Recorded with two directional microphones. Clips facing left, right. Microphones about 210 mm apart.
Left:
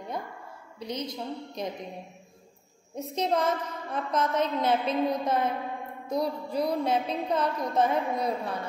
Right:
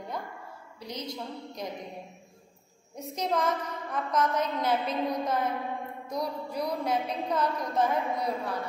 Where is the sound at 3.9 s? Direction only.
25° left (ahead or behind).